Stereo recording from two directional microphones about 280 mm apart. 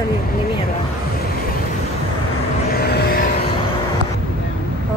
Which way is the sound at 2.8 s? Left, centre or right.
Left.